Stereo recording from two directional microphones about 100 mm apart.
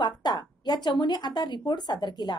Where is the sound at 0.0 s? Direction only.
45° left (ahead or behind).